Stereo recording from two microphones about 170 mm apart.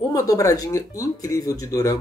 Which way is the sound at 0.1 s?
20° left (ahead or behind).